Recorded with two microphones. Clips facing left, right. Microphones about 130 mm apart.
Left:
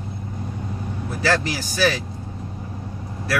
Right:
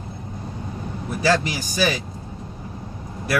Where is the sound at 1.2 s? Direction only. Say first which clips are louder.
Right 2 dB; 15° right (ahead or behind).